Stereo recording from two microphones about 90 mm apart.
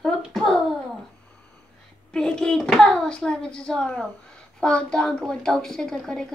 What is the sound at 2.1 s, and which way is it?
A woman's voice, 5° left (ahead or behind).